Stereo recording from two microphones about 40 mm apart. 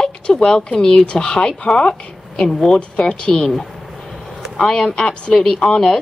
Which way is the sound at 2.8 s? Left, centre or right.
Left.